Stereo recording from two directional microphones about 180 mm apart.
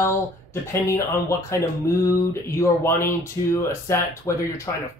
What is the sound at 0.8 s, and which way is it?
Speech, 15° left (ahead or behind).